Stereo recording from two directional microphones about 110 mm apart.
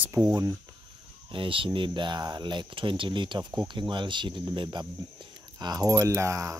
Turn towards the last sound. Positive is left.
turn(degrees=-30)  # may be behind; listen again after turning